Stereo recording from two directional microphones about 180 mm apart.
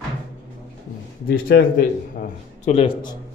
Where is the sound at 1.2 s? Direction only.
55° left (ahead or behind).